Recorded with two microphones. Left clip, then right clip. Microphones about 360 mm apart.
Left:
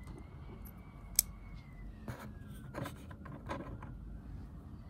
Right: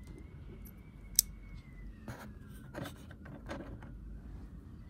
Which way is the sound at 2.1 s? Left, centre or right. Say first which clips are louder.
Even; centre.